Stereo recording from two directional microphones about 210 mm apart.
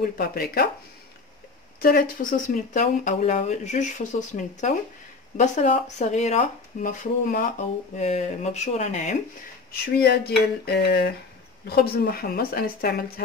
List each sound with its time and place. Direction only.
0.2 s speech: 45° left (ahead or behind)
1.8 s speech: 45° left (ahead or behind)
9.7 s speech: 50° left (ahead or behind)